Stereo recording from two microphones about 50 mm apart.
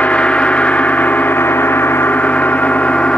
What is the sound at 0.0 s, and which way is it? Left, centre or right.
Gong, left.